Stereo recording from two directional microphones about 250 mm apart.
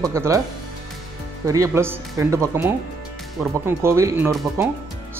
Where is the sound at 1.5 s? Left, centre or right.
Centre.